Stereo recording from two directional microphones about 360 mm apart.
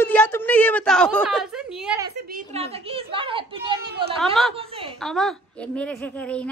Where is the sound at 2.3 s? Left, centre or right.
Centre.